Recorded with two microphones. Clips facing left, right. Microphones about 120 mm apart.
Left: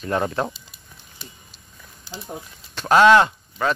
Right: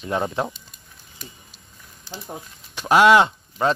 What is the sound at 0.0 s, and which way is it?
Speech, 15° right (ahead or behind).